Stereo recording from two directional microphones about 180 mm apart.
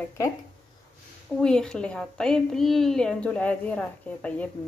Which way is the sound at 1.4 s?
5° left (ahead or behind).